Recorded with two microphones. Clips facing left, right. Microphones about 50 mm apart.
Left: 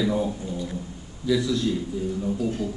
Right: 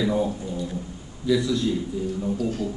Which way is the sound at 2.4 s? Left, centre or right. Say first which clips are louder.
Even; centre.